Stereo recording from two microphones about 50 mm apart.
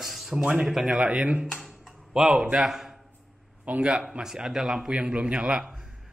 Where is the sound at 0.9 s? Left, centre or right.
Right.